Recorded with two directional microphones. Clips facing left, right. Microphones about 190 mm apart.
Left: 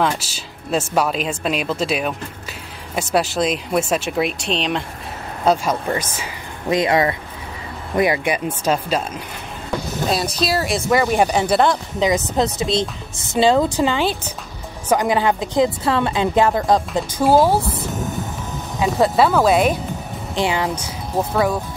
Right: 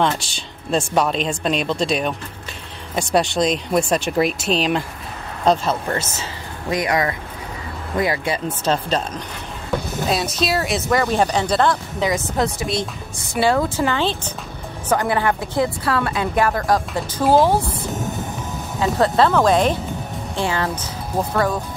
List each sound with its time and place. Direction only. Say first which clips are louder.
0.0 s speech: even; 5° left (ahead or behind)
5.4 s speech: even; 10° left (ahead or behind)
6.7 s a woman's voice: left 3 dB; 25° left (ahead or behind)
8.6 s speech: even; 10° left (ahead or behind)
10.0 s a woman's voice: left 2 dB; centre (ahead or behind); by 17.0 s 20° left (ahead or behind)
17.2 s speech: left 1 dB; 10° left (ahead or behind)
18.8 s speech: left 1 dB; 10° left (ahead or behind)